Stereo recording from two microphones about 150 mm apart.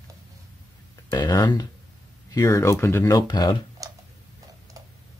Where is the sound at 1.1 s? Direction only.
30° left (ahead or behind).